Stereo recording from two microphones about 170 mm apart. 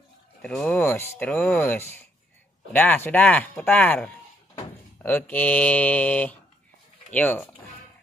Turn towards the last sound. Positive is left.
turn(degrees=10)  # may be behind; listen again after turning